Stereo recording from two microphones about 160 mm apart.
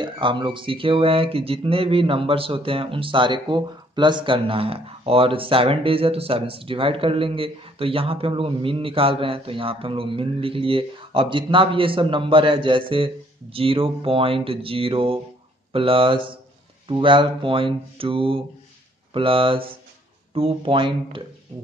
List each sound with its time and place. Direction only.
0.0 s speech: 30° right (ahead or behind)